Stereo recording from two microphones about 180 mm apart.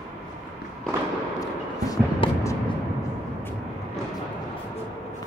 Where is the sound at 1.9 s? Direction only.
20° left (ahead or behind).